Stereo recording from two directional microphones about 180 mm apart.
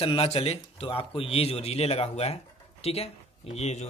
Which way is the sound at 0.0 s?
30° left (ahead or behind).